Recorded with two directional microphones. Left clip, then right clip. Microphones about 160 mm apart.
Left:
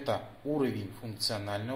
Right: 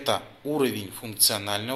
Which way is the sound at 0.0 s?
25° right (ahead or behind).